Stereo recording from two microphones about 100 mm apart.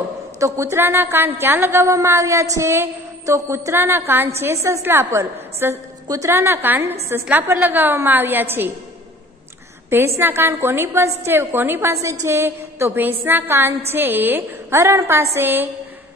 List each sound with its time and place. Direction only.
0.4 s a woman's voice: 30° right (ahead or behind)
9.8 s a woman's voice: 25° right (ahead or behind)